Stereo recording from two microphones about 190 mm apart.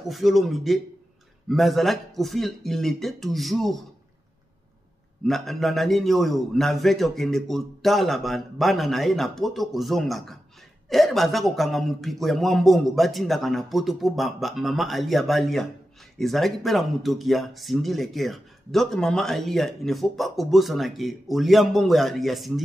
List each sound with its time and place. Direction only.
0.1 s speech: centre (ahead or behind)
5.2 s speech: centre (ahead or behind)